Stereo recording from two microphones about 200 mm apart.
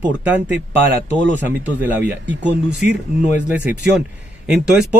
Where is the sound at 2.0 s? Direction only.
60° right (ahead or behind).